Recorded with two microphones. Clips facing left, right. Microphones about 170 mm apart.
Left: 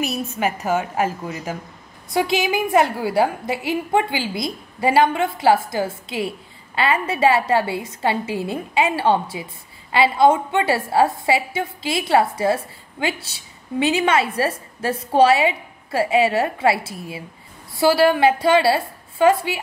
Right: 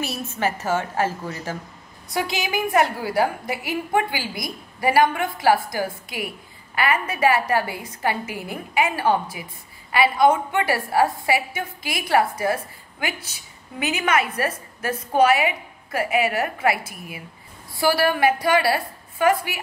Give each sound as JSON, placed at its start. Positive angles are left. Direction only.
{"t": 0.0, "sound": "a woman's voice", "side_deg": 15}